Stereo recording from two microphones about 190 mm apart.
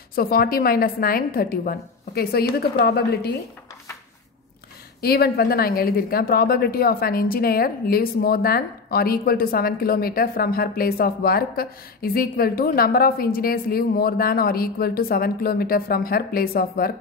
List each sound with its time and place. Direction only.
0.1 s a woman's voice: 50° left (ahead or behind)
5.0 s speech: 55° left (ahead or behind)